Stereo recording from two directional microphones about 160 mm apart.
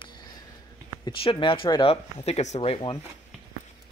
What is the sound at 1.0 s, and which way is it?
Speech, 30° left (ahead or behind).